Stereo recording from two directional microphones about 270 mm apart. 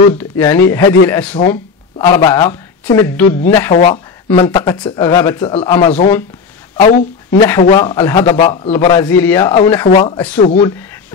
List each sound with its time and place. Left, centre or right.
0.2 s speech: centre
3.7 s speech: left